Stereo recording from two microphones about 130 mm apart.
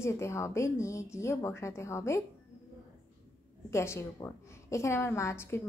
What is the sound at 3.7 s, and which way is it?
A woman's voice, 20° left (ahead or behind).